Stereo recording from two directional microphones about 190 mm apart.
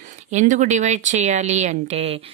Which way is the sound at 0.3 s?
40° right (ahead or behind).